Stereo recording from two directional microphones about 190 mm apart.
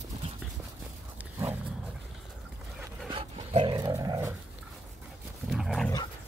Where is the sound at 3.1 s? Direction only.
30° right (ahead or behind).